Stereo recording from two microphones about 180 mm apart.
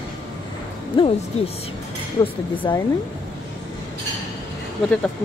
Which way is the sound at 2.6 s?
20° left (ahead or behind).